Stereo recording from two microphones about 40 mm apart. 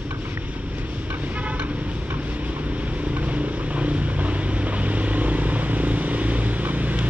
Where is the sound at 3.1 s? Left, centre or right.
Right.